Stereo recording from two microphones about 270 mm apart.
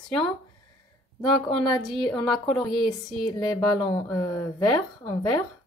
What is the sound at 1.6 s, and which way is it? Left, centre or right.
Speech, centre.